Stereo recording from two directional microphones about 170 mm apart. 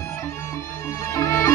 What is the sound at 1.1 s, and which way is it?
Music, 15° left (ahead or behind).